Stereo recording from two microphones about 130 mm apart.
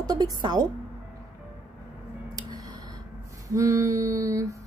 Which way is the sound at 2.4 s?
30° right (ahead or behind).